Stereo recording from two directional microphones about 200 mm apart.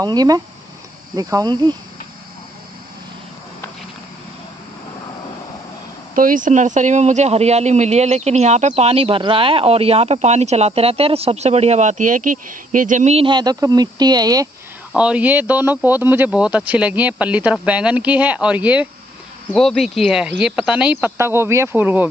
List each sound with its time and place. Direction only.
0.0 s cricket: 20° right (ahead or behind)
6.1 s speech: 40° right (ahead or behind); by 14.5 s 20° right (ahead or behind)
14.9 s speech: 5° right (ahead or behind)